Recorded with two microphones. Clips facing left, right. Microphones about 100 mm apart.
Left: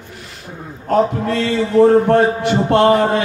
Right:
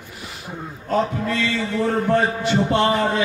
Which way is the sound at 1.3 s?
40° left (ahead or behind).